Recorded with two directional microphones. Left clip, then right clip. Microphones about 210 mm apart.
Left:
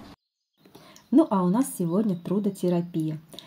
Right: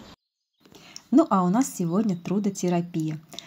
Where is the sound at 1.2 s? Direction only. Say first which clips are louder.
Right 1 dB; 20° right (ahead or behind).